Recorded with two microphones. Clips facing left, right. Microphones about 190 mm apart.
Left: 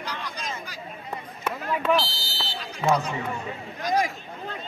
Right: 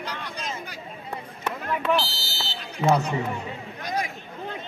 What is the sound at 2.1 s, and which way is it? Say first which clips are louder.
Smoke detector: even; 70° right (ahead or behind).